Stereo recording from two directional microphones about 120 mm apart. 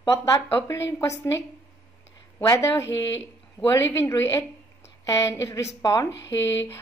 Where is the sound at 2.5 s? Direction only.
25° left (ahead or behind).